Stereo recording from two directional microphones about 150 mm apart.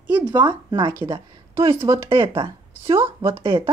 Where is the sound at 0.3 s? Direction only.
30° right (ahead or behind).